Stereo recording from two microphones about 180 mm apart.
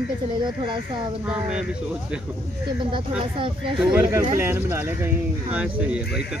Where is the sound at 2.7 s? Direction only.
25° right (ahead or behind).